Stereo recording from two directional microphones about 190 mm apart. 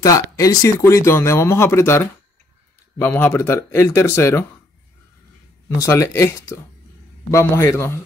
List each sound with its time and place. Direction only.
0.0 s speech: 15° left (ahead or behind)
5.8 s speech: 15° left (ahead or behind)